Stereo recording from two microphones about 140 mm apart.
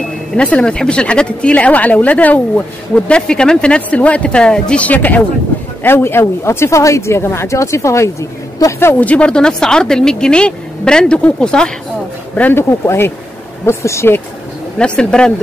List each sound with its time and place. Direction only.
0.4 s a woman's voice: 10° left (ahead or behind)
14.8 s a woman's voice: 5° left (ahead or behind)